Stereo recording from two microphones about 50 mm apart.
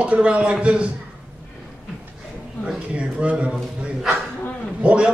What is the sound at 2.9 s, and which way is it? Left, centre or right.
Speech, right.